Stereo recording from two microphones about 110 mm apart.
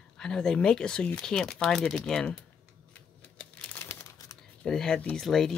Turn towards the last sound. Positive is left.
turn(degrees=5)  # may be behind; listen again after turning